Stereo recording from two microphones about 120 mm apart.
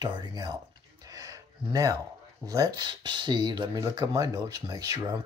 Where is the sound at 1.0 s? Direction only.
30° right (ahead or behind).